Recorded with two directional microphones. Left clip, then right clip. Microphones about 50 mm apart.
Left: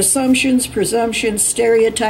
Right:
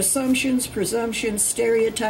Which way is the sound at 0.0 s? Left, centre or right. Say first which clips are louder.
Left 7 dB; centre.